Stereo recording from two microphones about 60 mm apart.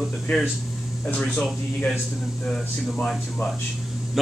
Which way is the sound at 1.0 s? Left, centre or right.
Centre.